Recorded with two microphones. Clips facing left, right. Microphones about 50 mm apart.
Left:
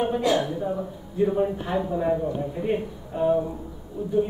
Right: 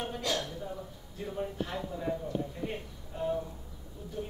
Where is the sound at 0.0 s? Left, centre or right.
Left.